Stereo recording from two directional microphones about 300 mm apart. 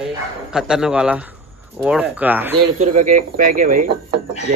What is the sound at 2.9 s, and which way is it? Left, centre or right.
Speech, right.